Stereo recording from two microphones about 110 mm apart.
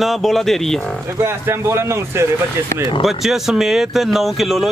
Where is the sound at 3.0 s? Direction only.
5° right (ahead or behind).